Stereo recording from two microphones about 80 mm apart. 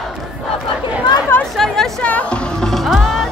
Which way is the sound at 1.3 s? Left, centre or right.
Left.